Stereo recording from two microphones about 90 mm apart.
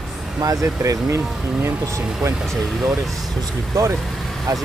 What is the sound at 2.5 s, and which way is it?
Speech, centre (ahead or behind).